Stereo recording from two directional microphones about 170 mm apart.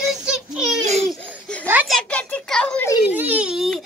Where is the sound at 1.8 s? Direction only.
5° left (ahead or behind).